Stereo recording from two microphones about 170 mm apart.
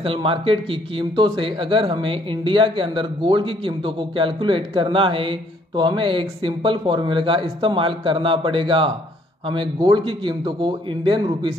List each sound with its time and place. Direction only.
0.0 s speech: 30° right (ahead or behind)